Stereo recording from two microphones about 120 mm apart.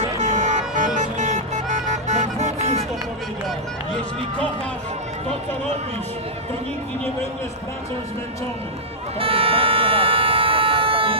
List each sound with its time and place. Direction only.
0.2 s music: 80° right
9.2 s vehicle: 50° right (ahead or behind)